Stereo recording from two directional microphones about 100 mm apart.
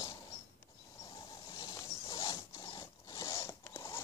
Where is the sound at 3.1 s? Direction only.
30° left (ahead or behind).